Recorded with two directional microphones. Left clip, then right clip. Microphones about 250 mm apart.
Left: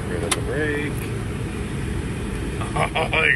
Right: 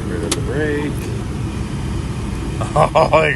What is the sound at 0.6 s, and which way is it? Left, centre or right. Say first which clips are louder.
Vehicle: right 6 dB; centre.